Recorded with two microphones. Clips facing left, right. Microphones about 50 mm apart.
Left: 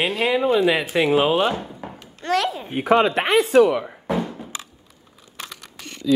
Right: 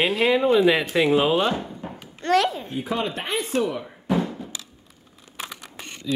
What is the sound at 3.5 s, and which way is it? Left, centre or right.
Speech, left.